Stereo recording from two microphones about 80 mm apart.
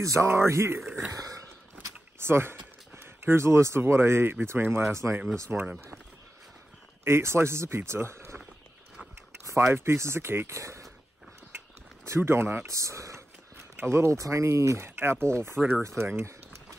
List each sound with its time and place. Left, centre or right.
0.0 s speech: right
1.1 s a sound: right
2.1 s speech: right
5.5 s speech: right
7.1 s speech: right
9.4 s speech: right
11.5 s a sound: right
12.2 s speech: right